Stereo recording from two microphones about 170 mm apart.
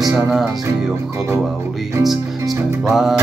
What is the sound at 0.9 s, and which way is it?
Music, 15° right (ahead or behind).